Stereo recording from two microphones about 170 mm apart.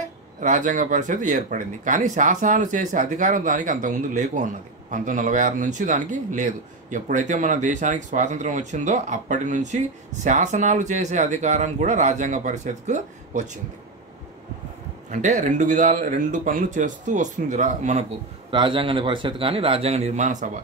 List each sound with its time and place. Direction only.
0.4 s a man's voice: 50° right (ahead or behind)
15.0 s a man's voice: 45° right (ahead or behind)
18.5 s a man's voice: 30° right (ahead or behind)